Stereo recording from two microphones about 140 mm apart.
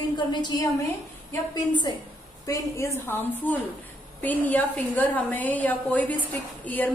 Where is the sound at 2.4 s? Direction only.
20° left (ahead or behind).